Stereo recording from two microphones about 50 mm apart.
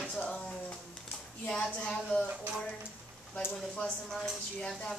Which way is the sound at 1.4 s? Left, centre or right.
Centre.